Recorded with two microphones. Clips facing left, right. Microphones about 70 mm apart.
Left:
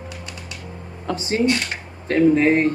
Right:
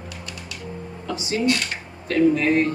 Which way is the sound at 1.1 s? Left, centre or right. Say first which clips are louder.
Left 2 dB; left.